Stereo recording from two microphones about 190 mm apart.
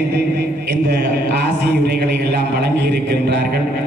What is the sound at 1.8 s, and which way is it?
A man's voice, 60° right (ahead or behind).